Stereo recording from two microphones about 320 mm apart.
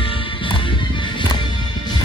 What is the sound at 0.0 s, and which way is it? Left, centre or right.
Music, centre.